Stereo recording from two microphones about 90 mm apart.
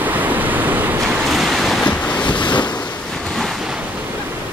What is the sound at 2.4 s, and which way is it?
Wind noise, 55° left (ahead or behind).